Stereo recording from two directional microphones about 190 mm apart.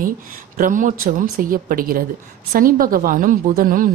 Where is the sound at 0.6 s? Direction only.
45° right (ahead or behind).